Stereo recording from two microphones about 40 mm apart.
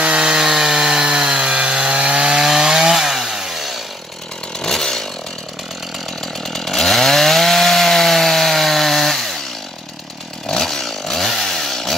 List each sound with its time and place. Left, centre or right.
0.0 s chainsaw: centre
4.6 s chainsaw: centre
6.2 s chainsaw: centre
10.5 s chainsaw: centre